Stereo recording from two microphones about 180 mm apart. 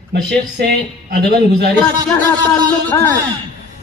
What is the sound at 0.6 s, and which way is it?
A man's voice, 65° right (ahead or behind).